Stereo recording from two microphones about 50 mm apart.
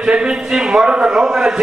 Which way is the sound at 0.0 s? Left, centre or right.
Centre.